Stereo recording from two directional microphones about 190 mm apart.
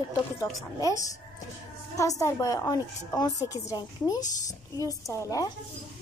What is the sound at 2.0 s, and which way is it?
A woman's voice, 15° left (ahead or behind).